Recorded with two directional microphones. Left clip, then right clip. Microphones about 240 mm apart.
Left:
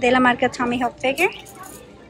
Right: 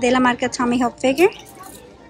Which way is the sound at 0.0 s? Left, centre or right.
Centre.